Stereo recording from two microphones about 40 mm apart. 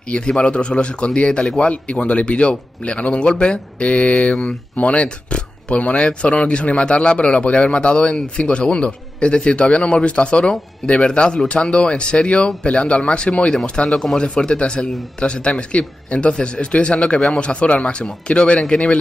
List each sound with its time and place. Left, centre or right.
0.2 s speech: left
4.2 s mantra: centre
4.7 s speech: left
13.8 s speech: centre